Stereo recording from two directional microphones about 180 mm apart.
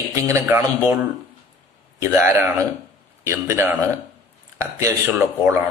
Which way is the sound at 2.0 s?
15° right (ahead or behind).